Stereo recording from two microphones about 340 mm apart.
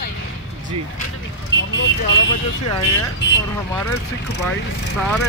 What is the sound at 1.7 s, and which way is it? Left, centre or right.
Speech, left.